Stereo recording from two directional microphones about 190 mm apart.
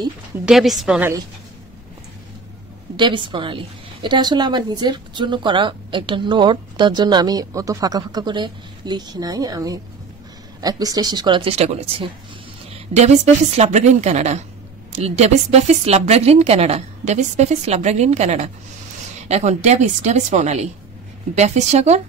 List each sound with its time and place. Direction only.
0.5 s a woman's voice: centre (ahead or behind)
3.0 s a woman's voice: 25° right (ahead or behind)